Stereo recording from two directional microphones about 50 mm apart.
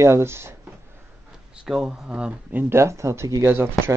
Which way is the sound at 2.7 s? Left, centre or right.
Right.